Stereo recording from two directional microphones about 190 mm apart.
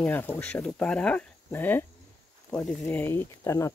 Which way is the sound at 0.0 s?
10° left (ahead or behind).